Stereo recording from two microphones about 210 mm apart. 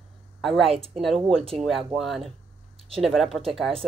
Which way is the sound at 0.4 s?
Centre (ahead or behind).